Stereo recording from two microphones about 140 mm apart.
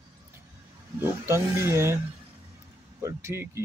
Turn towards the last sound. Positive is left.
turn(degrees=-20)  # may be behind; listen again after turning